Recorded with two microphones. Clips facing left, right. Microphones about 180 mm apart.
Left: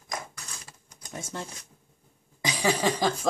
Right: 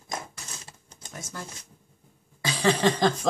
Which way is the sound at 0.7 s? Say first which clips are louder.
Right 2 dB; 25° right (ahead or behind).